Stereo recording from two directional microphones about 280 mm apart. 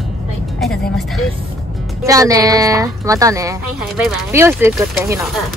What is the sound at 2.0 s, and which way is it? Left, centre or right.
Speech, centre.